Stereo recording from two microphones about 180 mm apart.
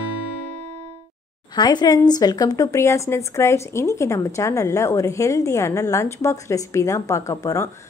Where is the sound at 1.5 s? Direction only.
20° left (ahead or behind).